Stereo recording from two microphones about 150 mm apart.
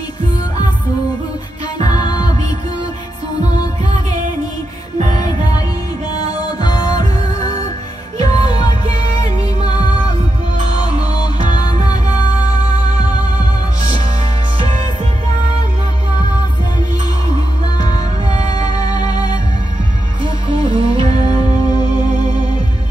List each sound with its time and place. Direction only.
1.8 s music: 25° left (ahead or behind)
6.6 s music: 25° left (ahead or behind)
17.7 s music: 25° left (ahead or behind)
20.5 s music: 25° left (ahead or behind)